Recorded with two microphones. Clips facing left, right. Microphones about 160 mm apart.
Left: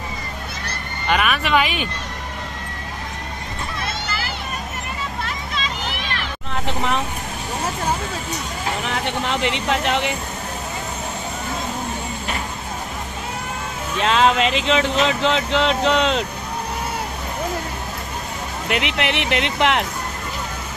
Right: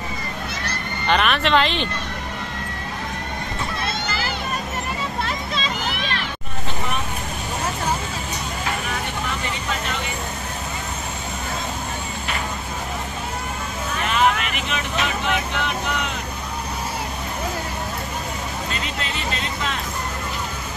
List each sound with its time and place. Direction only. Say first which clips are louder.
1.0 s speech: right 1 dB; 5° left (ahead or behind)
6.5 s vehicle: left 6 dB; 90° left
9.0 s speech: left 5 dB; 80° left
13.9 s speech: left 4 dB; 90° left
18.7 s speech: left 7 dB; 80° left